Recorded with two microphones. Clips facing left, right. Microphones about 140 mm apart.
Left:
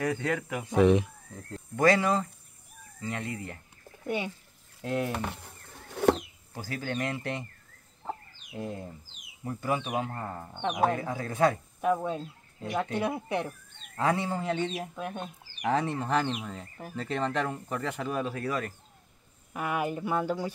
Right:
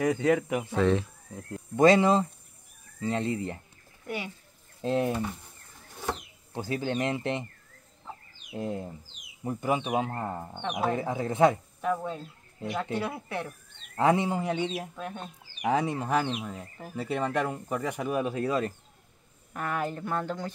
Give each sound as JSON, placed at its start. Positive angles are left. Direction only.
{"t": 0.0, "sound": "speech", "side_deg": -20}
{"t": 0.7, "sound": "speech", "side_deg": 15}
{"t": 1.8, "sound": "speech", "side_deg": -20}
{"t": 4.8, "sound": "speech", "side_deg": -25}
{"t": 5.1, "sound": "speech", "side_deg": 80}
{"t": 6.0, "sound": "a sound", "side_deg": 70}
{"t": 6.5, "sound": "speech", "side_deg": -20}
{"t": 8.5, "sound": "speech", "side_deg": -20}
{"t": 11.8, "sound": "speech", "side_deg": 15}
{"t": 13.9, "sound": "speech", "side_deg": -20}
{"t": 15.0, "sound": "speech", "side_deg": 15}
{"t": 15.6, "sound": "speech", "side_deg": -10}
{"t": 19.5, "sound": "speech", "side_deg": 10}